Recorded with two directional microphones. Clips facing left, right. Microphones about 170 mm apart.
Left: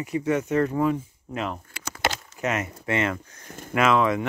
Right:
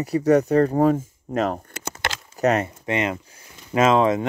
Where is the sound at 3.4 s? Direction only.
50° left (ahead or behind).